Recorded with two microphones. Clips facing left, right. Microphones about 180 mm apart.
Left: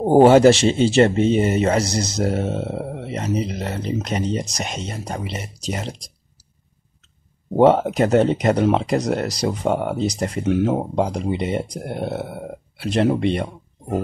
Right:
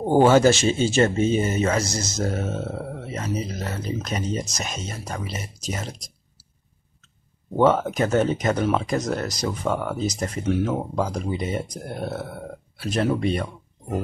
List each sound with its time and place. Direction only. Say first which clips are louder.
0.0 s speech: left 5 dB; 30° left (ahead or behind)
7.5 s speech: left 5 dB; 30° left (ahead or behind)